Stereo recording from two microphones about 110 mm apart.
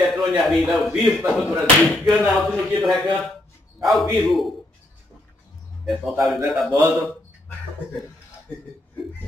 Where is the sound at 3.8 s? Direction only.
Centre (ahead or behind).